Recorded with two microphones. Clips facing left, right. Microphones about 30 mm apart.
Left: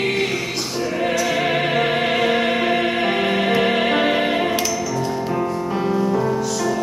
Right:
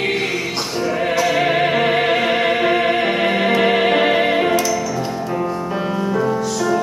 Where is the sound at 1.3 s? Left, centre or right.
Centre.